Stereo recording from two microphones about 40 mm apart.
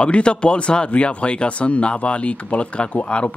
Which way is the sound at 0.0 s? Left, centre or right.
Left.